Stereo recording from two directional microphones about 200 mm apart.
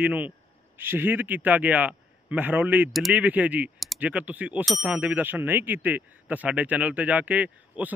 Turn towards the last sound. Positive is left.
turn(degrees=-5)  # may be behind; listen again after turning